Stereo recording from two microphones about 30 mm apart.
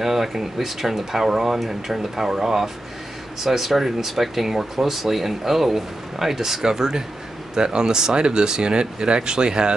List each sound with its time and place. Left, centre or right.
0.0 s speech: centre
6.6 s speech: right